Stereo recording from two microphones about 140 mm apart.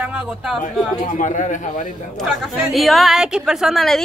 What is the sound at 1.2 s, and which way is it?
Speech, 65° left (ahead or behind).